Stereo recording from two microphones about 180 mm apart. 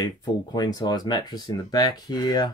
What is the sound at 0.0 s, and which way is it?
Speech, 20° left (ahead or behind).